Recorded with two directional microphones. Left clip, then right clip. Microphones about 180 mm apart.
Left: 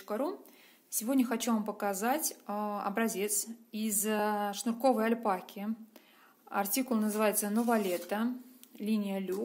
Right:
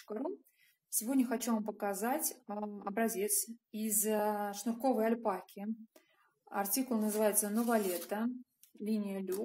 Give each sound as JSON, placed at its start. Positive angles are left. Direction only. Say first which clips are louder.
{"t": 0.8, "sound": "a woman's voice", "louder": "left 3 dB", "side_deg": 25}